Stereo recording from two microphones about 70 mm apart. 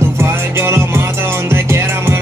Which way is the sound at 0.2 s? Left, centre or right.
Right.